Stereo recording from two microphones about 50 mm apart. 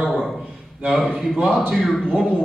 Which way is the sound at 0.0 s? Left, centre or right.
Centre.